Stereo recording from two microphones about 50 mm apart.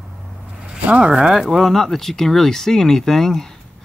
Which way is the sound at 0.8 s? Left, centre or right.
Right.